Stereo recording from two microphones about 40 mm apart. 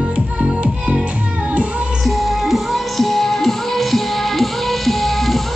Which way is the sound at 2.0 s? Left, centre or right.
Centre.